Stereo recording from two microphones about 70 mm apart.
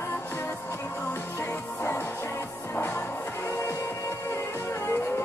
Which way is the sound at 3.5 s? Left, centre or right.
Left.